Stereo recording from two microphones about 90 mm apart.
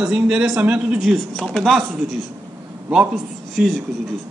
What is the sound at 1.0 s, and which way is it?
Speech, centre (ahead or behind).